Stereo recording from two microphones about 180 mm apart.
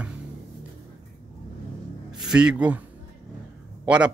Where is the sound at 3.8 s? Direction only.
5° right (ahead or behind).